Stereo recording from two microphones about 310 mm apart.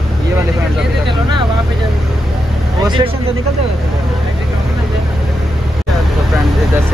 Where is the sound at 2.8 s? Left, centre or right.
Centre.